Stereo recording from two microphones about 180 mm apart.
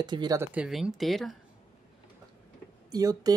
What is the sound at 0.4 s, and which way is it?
Speech, 5° right (ahead or behind).